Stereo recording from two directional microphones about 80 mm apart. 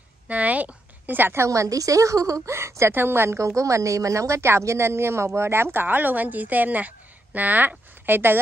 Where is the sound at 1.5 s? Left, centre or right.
Right.